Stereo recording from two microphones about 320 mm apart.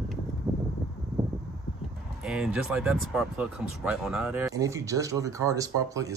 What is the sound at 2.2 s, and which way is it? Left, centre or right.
Speech, centre.